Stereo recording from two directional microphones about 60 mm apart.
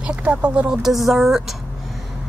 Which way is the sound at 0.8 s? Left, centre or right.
Centre.